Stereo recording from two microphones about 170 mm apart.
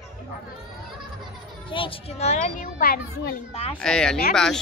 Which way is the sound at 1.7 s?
30° left (ahead or behind).